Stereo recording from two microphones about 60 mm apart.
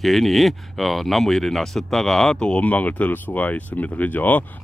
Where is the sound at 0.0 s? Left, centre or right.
Centre.